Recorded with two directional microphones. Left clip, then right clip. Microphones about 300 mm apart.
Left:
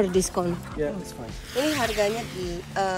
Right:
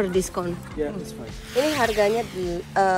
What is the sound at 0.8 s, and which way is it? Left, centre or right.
Speech, left.